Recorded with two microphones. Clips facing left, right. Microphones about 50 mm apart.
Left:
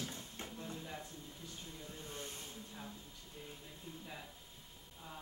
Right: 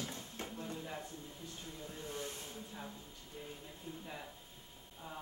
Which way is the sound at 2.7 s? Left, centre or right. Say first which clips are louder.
Right 2 dB; centre.